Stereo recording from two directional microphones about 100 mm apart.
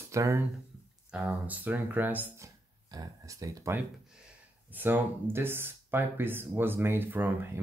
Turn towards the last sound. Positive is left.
turn(degrees=-20)  # may be behind; listen again after turning